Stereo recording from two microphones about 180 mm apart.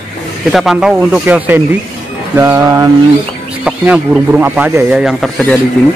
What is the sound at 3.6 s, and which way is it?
A man's voice, 5° right (ahead or behind).